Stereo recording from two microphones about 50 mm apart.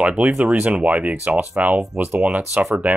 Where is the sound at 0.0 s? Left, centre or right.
Right.